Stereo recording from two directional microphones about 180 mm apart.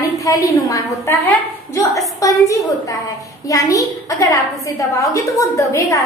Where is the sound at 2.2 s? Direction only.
20° left (ahead or behind).